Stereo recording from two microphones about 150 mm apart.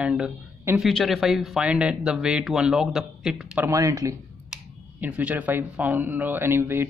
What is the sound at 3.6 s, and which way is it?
Speech, 20° right (ahead or behind).